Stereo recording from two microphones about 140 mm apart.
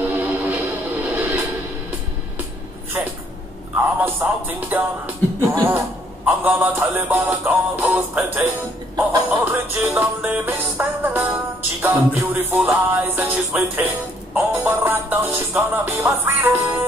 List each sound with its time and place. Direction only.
0.1 s music: 10° right (ahead or behind)
3.7 s speech: 15° right (ahead or behind)
6.2 s music: 15° right (ahead or behind)